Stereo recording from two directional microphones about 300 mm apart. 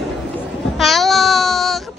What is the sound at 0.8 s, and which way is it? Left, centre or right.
Child singing, centre.